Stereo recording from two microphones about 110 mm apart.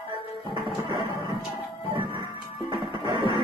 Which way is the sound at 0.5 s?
45° right (ahead or behind).